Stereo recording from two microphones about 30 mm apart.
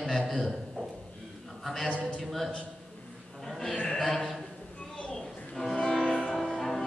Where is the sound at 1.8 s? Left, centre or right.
Left.